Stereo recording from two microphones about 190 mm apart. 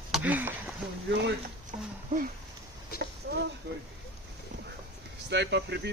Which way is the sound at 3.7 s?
65° right (ahead or behind).